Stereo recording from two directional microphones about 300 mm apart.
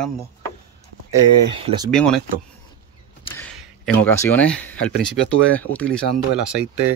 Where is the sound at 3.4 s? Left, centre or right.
Centre.